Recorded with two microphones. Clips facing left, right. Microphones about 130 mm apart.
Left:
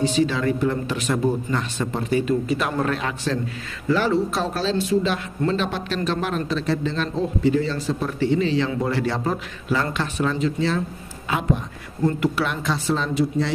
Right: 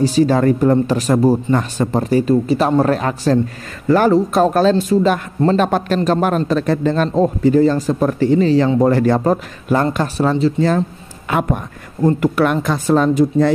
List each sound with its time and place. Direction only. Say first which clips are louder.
0.0 s a man's voice: right 7 dB; 40° right (ahead or behind)
11.2 s a man's voice: right 5 dB; 55° right (ahead or behind)